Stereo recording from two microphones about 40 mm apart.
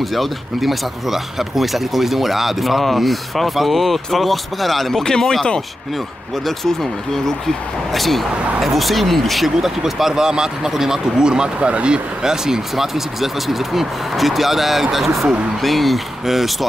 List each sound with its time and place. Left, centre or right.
0.0 s speech: centre
5.0 s speech: centre
6.4 s speech: centre; by 12.0 s right
12.2 s speech: centre